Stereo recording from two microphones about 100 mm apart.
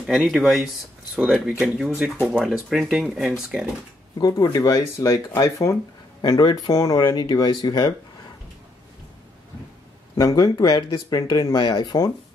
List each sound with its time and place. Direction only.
0.0 s speech: 5° right (ahead or behind)
4.2 s speech: 40° left (ahead or behind)
7.0 s speech: 50° left (ahead or behind)
10.1 s speech: 35° left (ahead or behind)
10.8 s speech: 45° left (ahead or behind)
11.1 s speech: 35° left (ahead or behind)
11.5 s speech: 50° left (ahead or behind)